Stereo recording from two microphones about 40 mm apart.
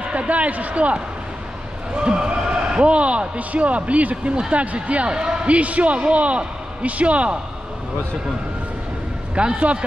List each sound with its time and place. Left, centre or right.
0.0 s speech: right
2.0 s speech: right
9.3 s a man's voice: right